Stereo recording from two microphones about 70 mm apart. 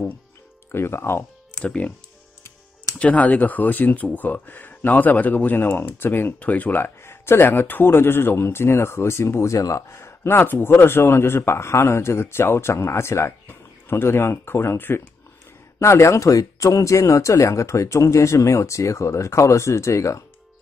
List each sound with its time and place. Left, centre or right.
0.7 s speech: left
1.6 s speech: centre
3.0 s speech: left